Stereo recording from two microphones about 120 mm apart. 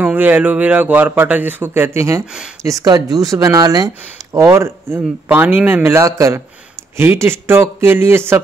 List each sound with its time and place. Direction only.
0.0 s a man's voice: 15° right (ahead or behind)